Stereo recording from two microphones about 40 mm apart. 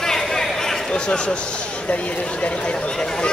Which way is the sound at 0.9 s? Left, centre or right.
Left.